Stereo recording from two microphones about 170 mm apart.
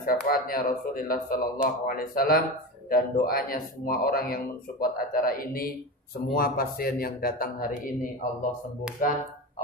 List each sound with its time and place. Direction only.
0.0 s speech: 55° left (ahead or behind)